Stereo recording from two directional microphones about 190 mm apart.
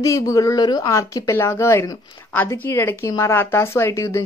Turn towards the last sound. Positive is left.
turn(degrees=15)  # may be behind; listen again after turning